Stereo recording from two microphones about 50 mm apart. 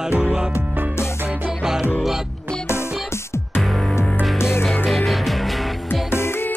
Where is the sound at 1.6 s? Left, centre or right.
Centre.